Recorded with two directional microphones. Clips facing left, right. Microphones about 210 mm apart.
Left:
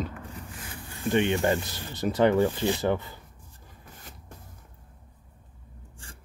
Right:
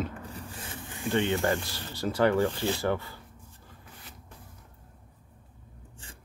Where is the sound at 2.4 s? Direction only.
15° left (ahead or behind).